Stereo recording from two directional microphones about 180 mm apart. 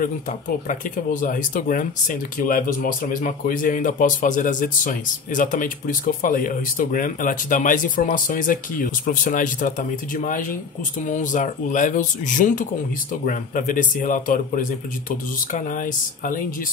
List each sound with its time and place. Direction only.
0.0 s speech: 45° left (ahead or behind)